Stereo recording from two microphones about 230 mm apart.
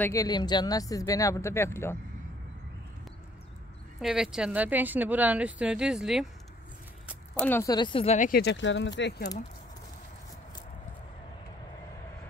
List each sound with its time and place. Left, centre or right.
0.0 s speech: centre
4.0 s a woman's voice: centre
7.3 s speech: centre; by 8.3 s left
8.3 s speech: left